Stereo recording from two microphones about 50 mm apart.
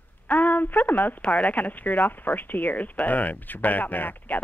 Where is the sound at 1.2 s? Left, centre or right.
Left.